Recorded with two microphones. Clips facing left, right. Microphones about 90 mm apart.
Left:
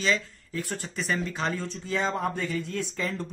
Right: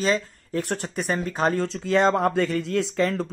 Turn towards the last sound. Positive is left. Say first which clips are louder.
# right 8 dB
turn(degrees=-80)